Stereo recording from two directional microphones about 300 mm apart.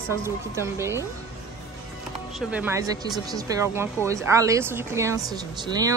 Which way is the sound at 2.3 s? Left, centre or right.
Centre.